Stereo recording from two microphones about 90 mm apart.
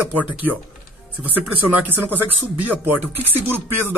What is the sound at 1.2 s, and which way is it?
Speech, 15° right (ahead or behind).